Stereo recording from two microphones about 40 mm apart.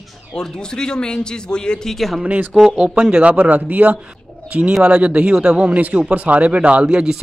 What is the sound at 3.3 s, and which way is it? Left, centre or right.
Speech, right.